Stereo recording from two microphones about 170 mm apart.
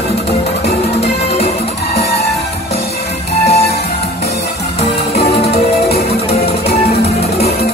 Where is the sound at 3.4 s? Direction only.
35° left (ahead or behind).